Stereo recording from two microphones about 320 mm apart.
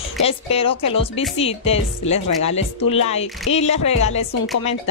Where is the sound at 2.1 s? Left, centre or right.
Left.